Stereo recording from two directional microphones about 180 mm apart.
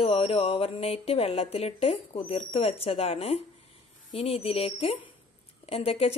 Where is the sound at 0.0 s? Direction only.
30° left (ahead or behind).